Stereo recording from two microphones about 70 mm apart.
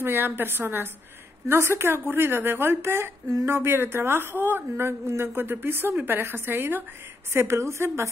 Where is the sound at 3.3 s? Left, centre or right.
Right.